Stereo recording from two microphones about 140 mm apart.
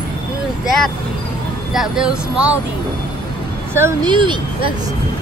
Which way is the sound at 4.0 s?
35° right (ahead or behind).